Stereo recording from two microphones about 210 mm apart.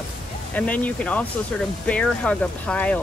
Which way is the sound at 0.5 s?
5° left (ahead or behind).